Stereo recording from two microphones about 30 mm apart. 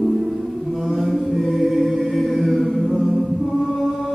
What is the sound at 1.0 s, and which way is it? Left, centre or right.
A capella, centre.